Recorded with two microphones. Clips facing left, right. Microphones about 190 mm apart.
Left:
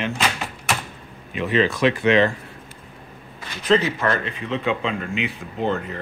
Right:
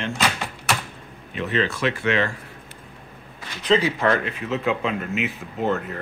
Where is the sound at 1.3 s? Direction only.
15° left (ahead or behind).